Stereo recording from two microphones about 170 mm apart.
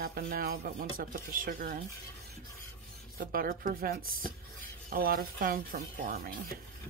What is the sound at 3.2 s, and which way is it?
Speech, 55° right (ahead or behind).